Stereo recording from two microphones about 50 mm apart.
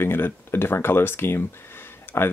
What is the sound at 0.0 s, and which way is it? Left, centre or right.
Speech, left.